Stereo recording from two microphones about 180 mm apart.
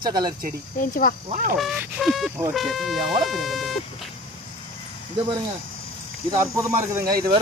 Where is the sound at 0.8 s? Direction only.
50° left (ahead or behind).